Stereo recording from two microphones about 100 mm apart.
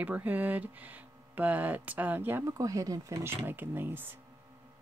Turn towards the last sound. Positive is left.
turn(degrees=-20)  # may be behind; listen again after turning